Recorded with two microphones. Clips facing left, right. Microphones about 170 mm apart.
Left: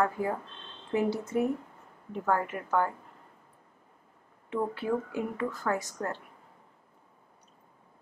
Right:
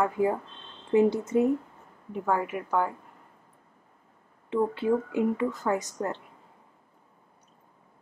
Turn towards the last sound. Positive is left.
turn(degrees=-20)  # may be behind; listen again after turning